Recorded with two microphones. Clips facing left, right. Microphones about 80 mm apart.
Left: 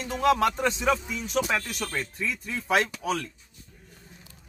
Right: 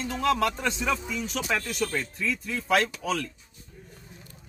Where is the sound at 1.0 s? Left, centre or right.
Centre.